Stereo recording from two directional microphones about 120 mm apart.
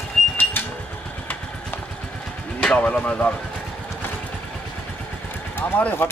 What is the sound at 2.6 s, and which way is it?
Speech, 10° left (ahead or behind).